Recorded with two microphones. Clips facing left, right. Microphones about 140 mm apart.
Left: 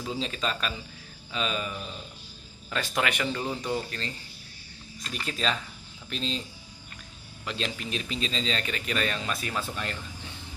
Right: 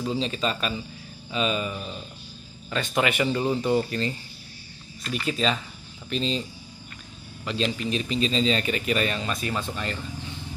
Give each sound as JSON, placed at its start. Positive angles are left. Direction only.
{"t": 0.0, "sound": "speech", "side_deg": 0}
{"t": 5.1, "sound": "speech", "side_deg": 0}
{"t": 7.4, "sound": "speech", "side_deg": 0}